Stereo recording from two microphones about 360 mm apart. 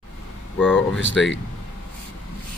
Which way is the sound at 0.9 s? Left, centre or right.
Left.